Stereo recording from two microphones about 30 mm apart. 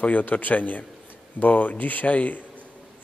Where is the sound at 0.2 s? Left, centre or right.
Left.